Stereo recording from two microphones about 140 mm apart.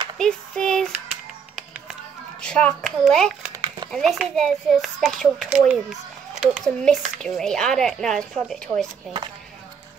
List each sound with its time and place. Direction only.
0.2 s speech: 5° left (ahead or behind)
2.4 s speech: 5° left (ahead or behind)